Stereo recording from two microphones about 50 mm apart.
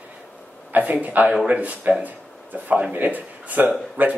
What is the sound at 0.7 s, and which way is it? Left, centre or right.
Speech, right.